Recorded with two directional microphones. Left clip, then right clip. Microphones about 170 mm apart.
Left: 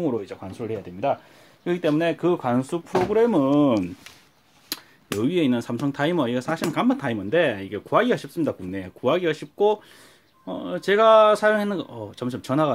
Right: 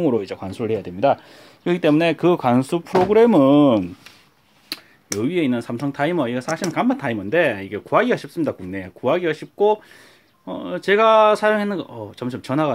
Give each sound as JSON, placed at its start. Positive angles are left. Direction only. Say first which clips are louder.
{"t": 0.0, "sound": "speech", "louder": "right 6 dB", "side_deg": -45}
{"t": 5.2, "sound": "speech", "louder": "right 1 dB", "side_deg": 0}